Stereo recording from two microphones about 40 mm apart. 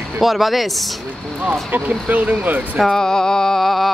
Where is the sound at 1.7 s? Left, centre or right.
Right.